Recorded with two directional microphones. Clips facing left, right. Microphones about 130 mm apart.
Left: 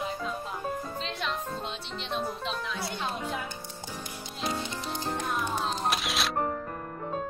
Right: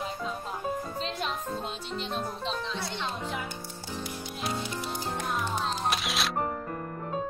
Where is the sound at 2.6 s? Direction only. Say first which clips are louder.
Even; 25° right (ahead or behind).